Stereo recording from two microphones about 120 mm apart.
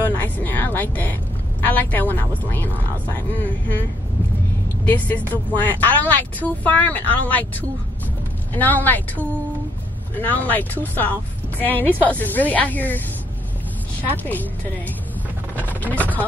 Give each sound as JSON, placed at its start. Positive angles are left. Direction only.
{"t": 0.2, "sound": "a sound", "side_deg": 15}
{"t": 1.7, "sound": "speech", "side_deg": 15}
{"t": 4.8, "sound": "a woman's voice", "side_deg": 15}
{"t": 14.1, "sound": "speech", "side_deg": 15}
{"t": 15.8, "sound": "speech", "side_deg": 15}